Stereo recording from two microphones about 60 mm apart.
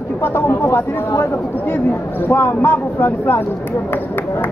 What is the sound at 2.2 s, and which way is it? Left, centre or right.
Speech, left.